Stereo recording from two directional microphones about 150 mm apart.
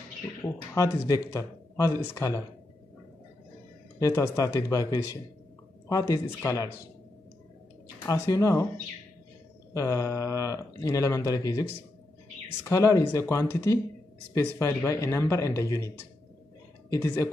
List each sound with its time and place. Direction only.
0.4 s speech: 20° left (ahead or behind)
4.0 s speech: 20° left (ahead or behind)
8.0 s speech: 20° left (ahead or behind)
9.8 s speech: 20° left (ahead or behind)
12.6 s speech: 20° left (ahead or behind)
16.9 s speech: 15° left (ahead or behind)